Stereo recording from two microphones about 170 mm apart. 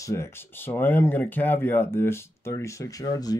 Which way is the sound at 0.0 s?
15° left (ahead or behind).